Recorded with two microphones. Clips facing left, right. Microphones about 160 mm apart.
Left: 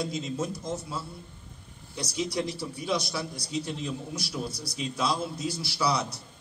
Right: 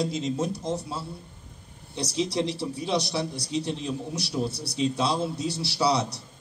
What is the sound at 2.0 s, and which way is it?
A man's voice, 30° right (ahead or behind).